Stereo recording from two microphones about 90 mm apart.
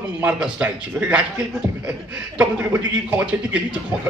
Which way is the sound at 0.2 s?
15° right (ahead or behind).